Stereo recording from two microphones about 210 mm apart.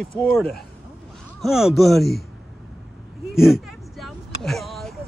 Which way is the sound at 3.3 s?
Centre (ahead or behind).